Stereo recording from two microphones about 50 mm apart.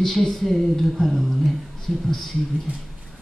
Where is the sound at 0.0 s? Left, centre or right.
Centre.